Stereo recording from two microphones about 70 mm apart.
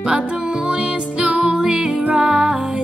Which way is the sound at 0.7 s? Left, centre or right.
Centre.